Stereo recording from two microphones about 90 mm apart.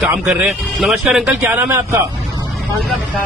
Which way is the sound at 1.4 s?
25° right (ahead or behind).